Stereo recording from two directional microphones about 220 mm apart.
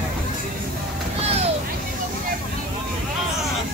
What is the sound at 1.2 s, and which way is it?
Vehicle, 30° right (ahead or behind).